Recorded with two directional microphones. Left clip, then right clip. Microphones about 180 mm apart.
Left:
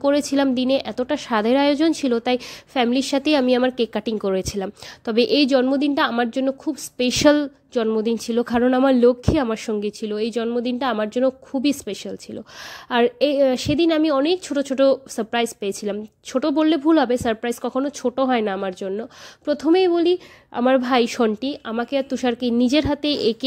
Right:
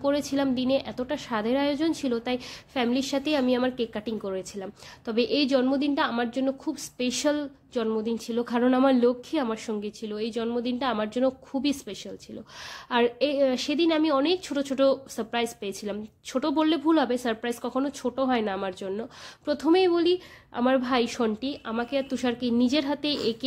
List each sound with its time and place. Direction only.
0.0 s a woman's voice: 45° left (ahead or behind)